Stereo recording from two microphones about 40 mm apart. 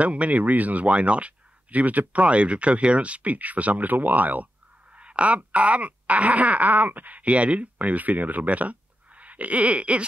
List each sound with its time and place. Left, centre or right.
0.0 s speech: right
4.9 s speech: right